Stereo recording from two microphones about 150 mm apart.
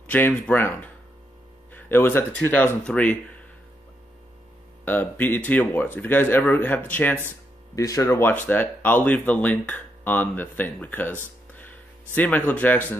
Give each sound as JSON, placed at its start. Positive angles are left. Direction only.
{"t": 0.0, "sound": "speech", "side_deg": 10}
{"t": 4.8, "sound": "speech", "side_deg": 10}
{"t": 7.7, "sound": "speech", "side_deg": 20}
{"t": 8.3, "sound": "speech", "side_deg": 10}
{"t": 12.2, "sound": "speech", "side_deg": 10}